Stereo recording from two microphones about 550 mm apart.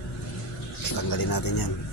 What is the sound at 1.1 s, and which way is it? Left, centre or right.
Speech, left.